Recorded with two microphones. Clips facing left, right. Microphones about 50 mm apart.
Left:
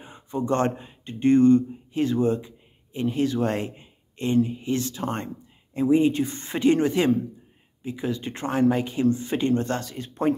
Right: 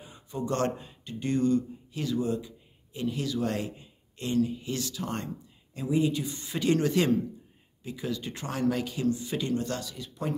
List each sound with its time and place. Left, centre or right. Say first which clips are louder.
0.0 s speech: left 6 dB; left